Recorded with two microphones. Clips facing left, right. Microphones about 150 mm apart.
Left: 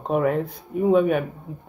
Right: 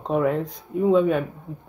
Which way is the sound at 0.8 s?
55° left (ahead or behind).